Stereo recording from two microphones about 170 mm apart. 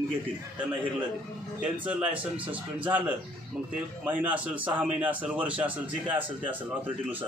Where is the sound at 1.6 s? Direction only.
5° right (ahead or behind).